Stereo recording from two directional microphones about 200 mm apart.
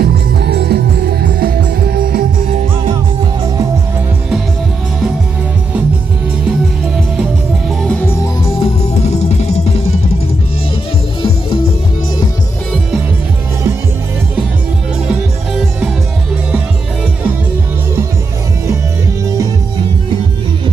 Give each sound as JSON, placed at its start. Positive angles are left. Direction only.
{"t": 0.0, "sound": "music", "side_deg": -55}
{"t": 7.8, "sound": "music", "side_deg": 5}
{"t": 9.1, "sound": "music", "side_deg": 35}
{"t": 15.0, "sound": "music", "side_deg": -5}